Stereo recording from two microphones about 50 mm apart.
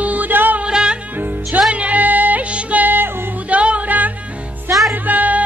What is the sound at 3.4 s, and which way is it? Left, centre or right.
Music, right.